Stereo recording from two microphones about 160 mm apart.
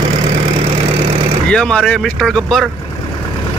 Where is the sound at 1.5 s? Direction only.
5° left (ahead or behind).